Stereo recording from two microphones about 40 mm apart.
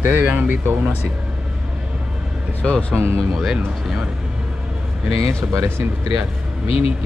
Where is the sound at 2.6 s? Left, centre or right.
Left.